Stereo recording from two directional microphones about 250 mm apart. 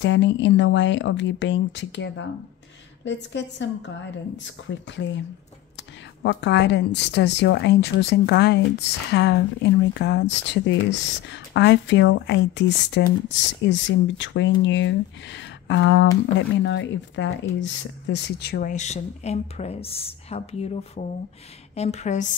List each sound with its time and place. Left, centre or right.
0.0 s speech: left
6.2 s speech: left